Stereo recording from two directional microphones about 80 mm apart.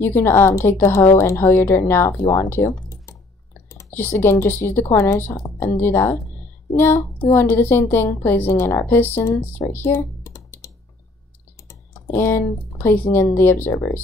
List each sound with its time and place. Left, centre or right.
0.0 s a woman's voice: left
2.3 s typing: left
4.2 s a woman's voice: left
6.7 s female singing: left
7.2 s a woman's voice: left
10.2 s computer keyboard: left
11.9 s a woman's voice: left